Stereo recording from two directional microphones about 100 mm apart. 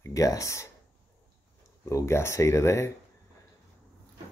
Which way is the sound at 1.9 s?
30° left (ahead or behind).